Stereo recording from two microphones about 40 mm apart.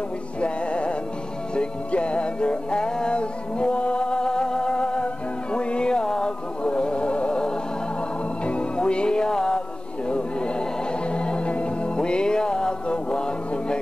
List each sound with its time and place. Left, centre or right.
0.4 s music: left